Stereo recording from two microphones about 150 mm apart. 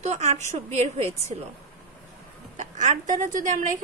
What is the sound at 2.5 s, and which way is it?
A woman's voice, 55° right (ahead or behind).